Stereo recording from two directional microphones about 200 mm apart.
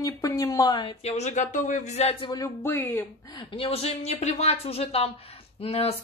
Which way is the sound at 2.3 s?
15° left (ahead or behind).